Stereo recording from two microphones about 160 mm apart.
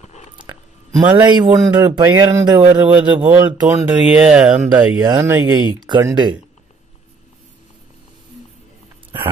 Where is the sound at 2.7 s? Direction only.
10° right (ahead or behind).